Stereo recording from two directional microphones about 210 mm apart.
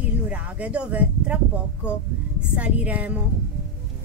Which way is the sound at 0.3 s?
5° right (ahead or behind).